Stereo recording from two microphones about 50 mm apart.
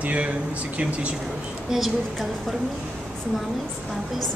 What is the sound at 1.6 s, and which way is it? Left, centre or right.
Speech, centre.